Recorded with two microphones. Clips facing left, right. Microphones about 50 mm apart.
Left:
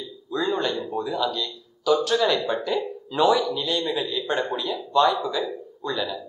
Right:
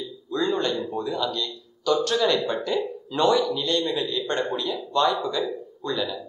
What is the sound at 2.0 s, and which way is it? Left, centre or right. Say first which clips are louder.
Speech: left 1 dB; centre.